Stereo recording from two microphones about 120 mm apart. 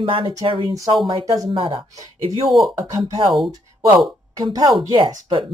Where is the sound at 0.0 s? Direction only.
45° right (ahead or behind).